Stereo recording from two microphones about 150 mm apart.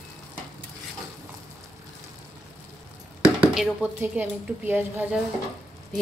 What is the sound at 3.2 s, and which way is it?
Speech, 10° right (ahead or behind).